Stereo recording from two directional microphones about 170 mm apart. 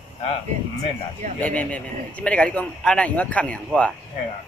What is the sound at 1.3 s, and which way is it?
Speech, 10° left (ahead or behind).